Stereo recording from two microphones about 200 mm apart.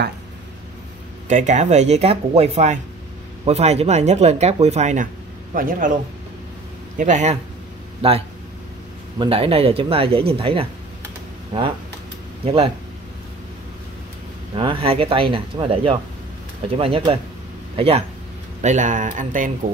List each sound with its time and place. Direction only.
1.3 s a man's voice: 35° right (ahead or behind)
7.0 s speech: 35° right (ahead or behind)
9.2 s speech: 30° right (ahead or behind)
14.6 s speech: 25° right (ahead or behind)